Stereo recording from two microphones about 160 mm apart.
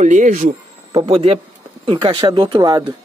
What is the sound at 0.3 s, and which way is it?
Speech, 60° right (ahead or behind).